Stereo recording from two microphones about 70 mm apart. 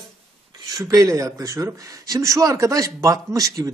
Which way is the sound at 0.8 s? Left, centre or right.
Right.